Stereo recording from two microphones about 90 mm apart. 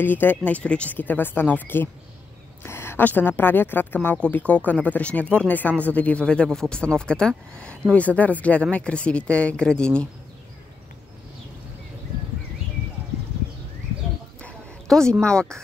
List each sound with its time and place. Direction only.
0.0 s speech: 20° left (ahead or behind)
14.9 s speech: 5° left (ahead or behind)